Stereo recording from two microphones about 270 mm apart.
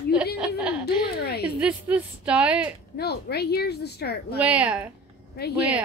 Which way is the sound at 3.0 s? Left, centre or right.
Left.